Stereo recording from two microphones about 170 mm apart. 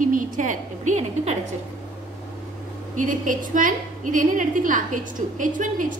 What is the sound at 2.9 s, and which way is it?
A woman's voice, 50° right (ahead or behind).